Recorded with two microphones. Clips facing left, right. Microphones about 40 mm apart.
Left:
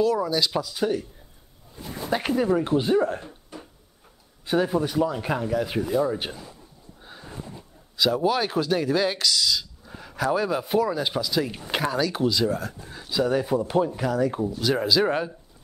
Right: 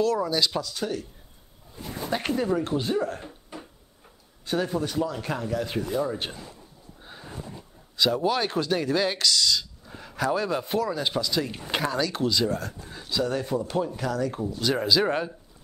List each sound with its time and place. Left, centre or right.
0.0 s speech: centre
2.0 s speech: centre
3.5 s cupboard open or close: centre
4.5 s speech: centre
7.0 s a sound: centre
8.0 s speech: centre
14.5 s speech: centre